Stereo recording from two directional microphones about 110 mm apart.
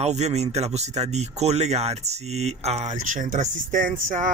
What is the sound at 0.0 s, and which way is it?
Speech, 85° right.